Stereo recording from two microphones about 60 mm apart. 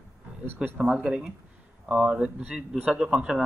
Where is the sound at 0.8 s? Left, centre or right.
Centre.